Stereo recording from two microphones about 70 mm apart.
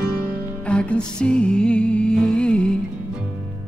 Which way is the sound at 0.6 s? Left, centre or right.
Centre.